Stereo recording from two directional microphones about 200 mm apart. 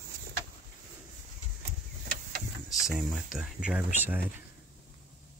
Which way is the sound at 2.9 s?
5° right (ahead or behind).